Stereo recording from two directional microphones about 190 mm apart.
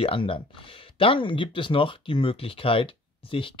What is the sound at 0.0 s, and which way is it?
Speech, 30° left (ahead or behind).